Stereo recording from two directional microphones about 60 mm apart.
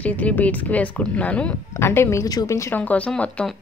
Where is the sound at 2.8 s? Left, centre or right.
Left.